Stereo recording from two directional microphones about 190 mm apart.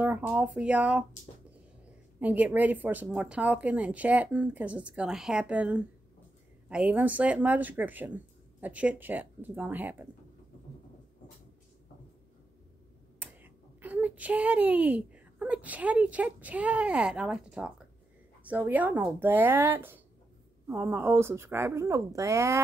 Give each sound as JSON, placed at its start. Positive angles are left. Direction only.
{"t": 0.0, "sound": "speech", "side_deg": -10}
{"t": 2.1, "sound": "speech", "side_deg": -10}
{"t": 13.2, "sound": "a child's voice", "side_deg": -10}